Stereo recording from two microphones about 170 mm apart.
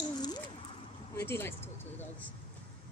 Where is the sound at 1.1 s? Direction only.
15° left (ahead or behind).